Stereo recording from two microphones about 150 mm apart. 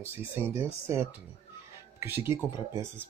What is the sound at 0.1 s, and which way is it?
Speech, 15° right (ahead or behind).